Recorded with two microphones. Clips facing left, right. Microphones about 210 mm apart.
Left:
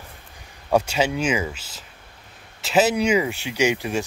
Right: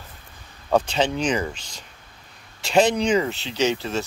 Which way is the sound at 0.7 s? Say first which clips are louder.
Even; 10° left (ahead or behind).